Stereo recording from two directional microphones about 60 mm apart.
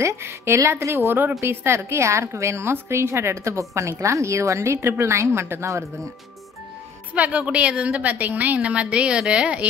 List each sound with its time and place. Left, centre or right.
0.0 s a woman's voice: right
7.2 s a woman's voice: right